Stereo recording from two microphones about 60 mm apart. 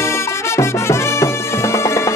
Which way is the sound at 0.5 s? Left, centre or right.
Left.